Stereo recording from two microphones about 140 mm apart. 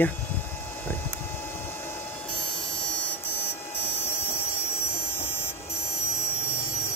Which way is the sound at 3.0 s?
15° left (ahead or behind).